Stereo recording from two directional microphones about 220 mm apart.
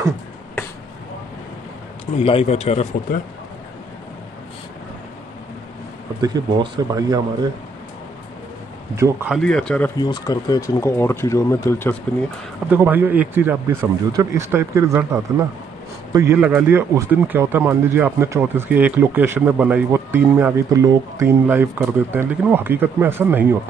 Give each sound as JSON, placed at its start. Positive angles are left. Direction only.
{"t": 2.1, "sound": "speech", "side_deg": 30}
{"t": 6.2, "sound": "speech", "side_deg": -15}
{"t": 8.9, "sound": "speech", "side_deg": -10}
{"t": 9.3, "sound": "speech", "side_deg": 5}
{"t": 9.9, "sound": "speech", "side_deg": 15}
{"t": 12.6, "sound": "speech", "side_deg": -10}